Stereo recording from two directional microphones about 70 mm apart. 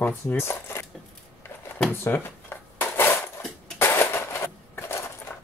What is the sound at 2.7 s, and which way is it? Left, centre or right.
Dishes, left.